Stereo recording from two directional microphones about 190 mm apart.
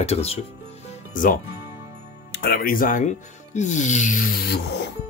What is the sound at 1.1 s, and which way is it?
Speech, 45° left (ahead or behind).